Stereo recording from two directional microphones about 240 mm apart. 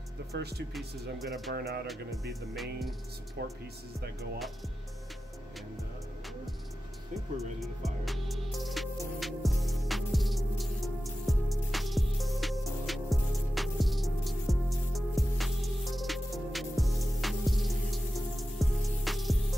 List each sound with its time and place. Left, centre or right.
0.3 s speech: right
1.2 s speech: centre
1.5 s speech: right
2.5 s speech: centre
3.4 s speech: right
7.3 s music: centre